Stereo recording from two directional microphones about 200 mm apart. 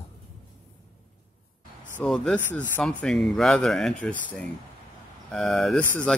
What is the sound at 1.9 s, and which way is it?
Speech, 5° left (ahead or behind).